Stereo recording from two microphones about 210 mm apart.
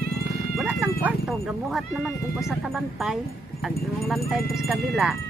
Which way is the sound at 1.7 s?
Centre (ahead or behind).